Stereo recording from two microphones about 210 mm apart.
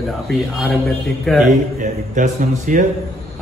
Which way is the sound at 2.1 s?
35° right (ahead or behind).